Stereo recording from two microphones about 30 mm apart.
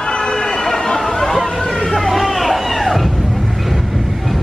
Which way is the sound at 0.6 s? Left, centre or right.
Left.